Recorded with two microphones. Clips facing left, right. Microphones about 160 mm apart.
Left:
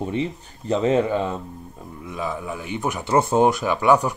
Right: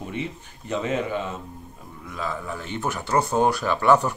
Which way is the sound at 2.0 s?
15° left (ahead or behind).